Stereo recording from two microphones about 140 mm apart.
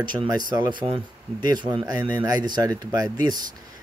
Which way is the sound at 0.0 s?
30° right (ahead or behind).